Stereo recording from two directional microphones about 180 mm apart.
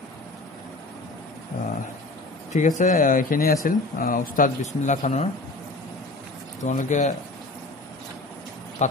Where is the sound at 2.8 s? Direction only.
45° left (ahead or behind).